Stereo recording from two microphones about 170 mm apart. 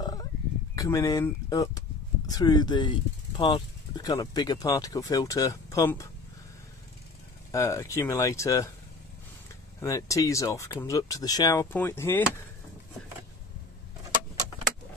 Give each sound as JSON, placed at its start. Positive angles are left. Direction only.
{"t": 0.0, "sound": "a sound", "side_deg": 25}
{"t": 0.7, "sound": "speech", "side_deg": 20}
{"t": 7.5, "sound": "speech", "side_deg": 20}
{"t": 9.8, "sound": "speech", "side_deg": 20}